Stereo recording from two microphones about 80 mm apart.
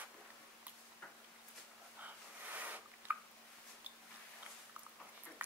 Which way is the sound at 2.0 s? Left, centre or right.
Right.